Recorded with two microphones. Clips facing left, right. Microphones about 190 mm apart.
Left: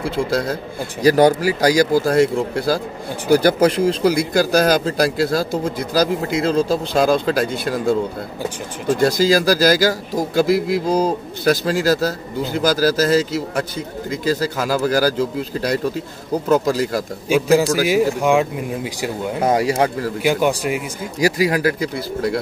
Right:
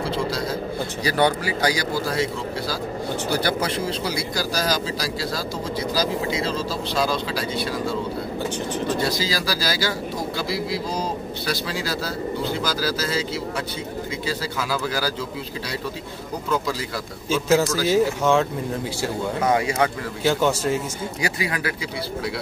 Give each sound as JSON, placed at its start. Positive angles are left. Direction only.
{"t": 1.0, "sound": "a man's voice", "side_deg": 40}
{"t": 16.4, "sound": "a man's voice", "side_deg": 45}
{"t": 17.3, "sound": "speech", "side_deg": 15}
{"t": 19.4, "sound": "speech", "side_deg": 35}
{"t": 20.2, "sound": "speech", "side_deg": 15}
{"t": 21.2, "sound": "speech", "side_deg": 40}